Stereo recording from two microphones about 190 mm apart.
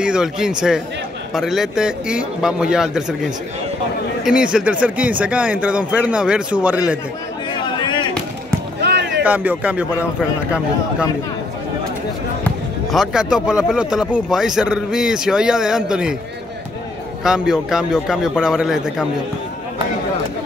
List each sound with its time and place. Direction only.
0.0 s speech: 5° right (ahead or behind)
4.2 s speech: 5° right (ahead or behind)
7.6 s a sound: 25° left (ahead or behind)
8.8 s a sound: 65° right (ahead or behind)
9.2 s speech: 10° right (ahead or behind)
12.4 s speech: centre (ahead or behind)
17.2 s speech: 5° right (ahead or behind)